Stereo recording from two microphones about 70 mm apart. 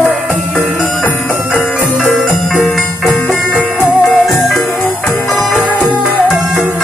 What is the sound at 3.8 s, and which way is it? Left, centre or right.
Music, left.